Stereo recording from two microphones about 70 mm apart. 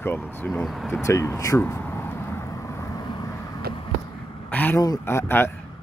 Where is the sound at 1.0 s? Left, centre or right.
Left.